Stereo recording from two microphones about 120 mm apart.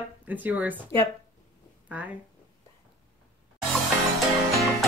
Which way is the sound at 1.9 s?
15° right (ahead or behind).